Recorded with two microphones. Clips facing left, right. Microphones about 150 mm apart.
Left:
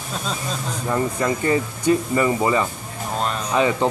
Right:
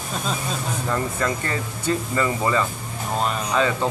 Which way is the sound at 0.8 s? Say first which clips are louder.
Left 4 dB; 15° left (ahead or behind).